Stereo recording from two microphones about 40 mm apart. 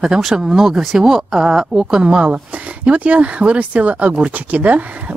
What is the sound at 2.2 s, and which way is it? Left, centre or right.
Speech, right.